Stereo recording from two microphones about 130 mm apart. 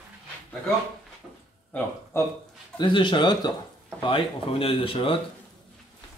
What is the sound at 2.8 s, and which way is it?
Speech, 35° left (ahead or behind).